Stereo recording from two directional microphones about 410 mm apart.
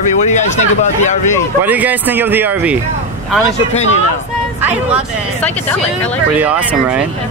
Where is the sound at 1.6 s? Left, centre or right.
Centre.